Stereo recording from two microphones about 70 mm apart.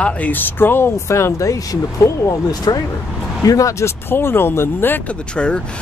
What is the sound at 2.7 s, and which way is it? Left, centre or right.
Speech, left.